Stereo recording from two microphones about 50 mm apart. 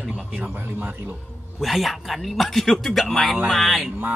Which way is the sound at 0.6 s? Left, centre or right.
Right.